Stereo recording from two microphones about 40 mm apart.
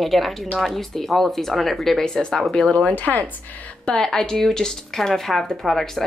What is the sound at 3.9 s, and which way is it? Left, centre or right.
Speech, centre.